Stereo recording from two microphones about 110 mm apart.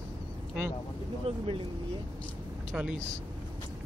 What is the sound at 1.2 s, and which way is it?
Speech, 55° right (ahead or behind).